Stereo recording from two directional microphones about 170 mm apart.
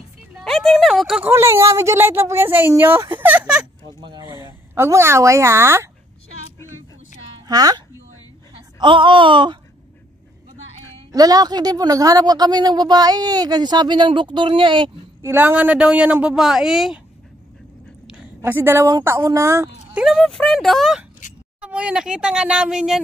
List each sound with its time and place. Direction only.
0.4 s speech: centre (ahead or behind); by 5.9 s 15° right (ahead or behind)
7.4 s speech: 20° right (ahead or behind)
11.1 s speech: 20° right (ahead or behind)
15.2 s speech: 10° right (ahead or behind)
18.0 s a woman's voice: 5° right (ahead or behind)